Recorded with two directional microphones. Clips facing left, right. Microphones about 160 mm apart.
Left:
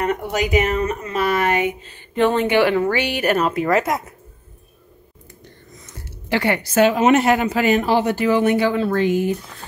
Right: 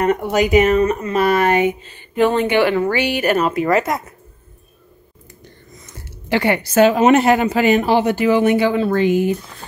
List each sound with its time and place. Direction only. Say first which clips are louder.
0.0 s speech: right 5 dB; 55° right (ahead or behind)
1.5 s speech: right 4 dB; 30° right (ahead or behind)
2.1 s a woman's voice: right 1 dB; 5° right (ahead or behind)
6.2 s a woman's voice: right 3 dB; 20° right (ahead or behind)
6.7 s speech: right 3 dB; 35° right (ahead or behind); by 9.4 s 20° right (ahead or behind)